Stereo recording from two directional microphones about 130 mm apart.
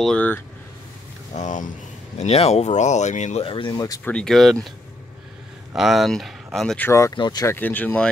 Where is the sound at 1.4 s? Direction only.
75° left (ahead or behind).